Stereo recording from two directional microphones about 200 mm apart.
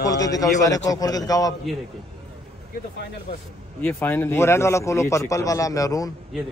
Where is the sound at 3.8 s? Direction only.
10° left (ahead or behind).